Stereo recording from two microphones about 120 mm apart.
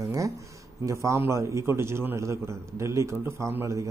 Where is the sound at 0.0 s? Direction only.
25° right (ahead or behind).